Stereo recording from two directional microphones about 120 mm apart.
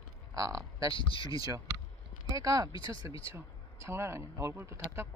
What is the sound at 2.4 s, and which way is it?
Speech, 30° right (ahead or behind).